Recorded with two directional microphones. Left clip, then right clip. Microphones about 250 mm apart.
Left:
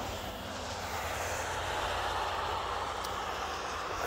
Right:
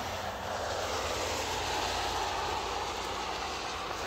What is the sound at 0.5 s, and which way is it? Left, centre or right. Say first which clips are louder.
Vehicle: right 6 dB; right.